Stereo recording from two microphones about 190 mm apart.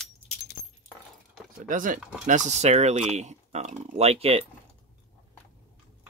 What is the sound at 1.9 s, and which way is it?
Speech, 5° right (ahead or behind).